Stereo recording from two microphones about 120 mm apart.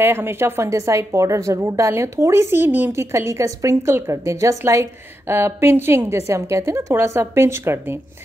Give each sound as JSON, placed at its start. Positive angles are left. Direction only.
{"t": 0.0, "sound": "a woman's voice", "side_deg": -20}